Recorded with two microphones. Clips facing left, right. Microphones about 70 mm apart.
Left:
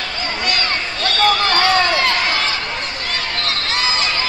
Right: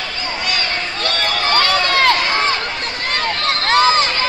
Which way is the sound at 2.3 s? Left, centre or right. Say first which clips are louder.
Right 3 dB; right.